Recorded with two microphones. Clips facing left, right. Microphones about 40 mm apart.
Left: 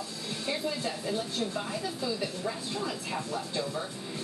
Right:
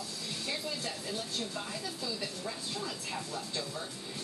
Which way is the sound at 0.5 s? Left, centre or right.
Centre.